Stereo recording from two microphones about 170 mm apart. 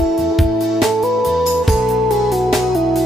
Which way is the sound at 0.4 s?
Centre (ahead or behind).